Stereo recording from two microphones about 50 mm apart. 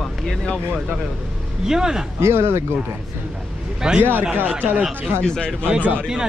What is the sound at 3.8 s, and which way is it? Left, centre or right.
Speech, centre.